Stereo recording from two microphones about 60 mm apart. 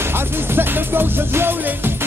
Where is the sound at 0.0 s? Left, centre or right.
Right.